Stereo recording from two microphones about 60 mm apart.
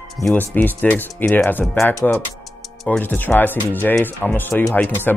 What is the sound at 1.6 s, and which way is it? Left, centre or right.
Speech, centre.